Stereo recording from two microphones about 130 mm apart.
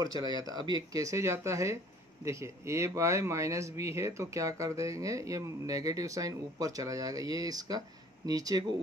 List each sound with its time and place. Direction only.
0.0 s speech: 30° right (ahead or behind)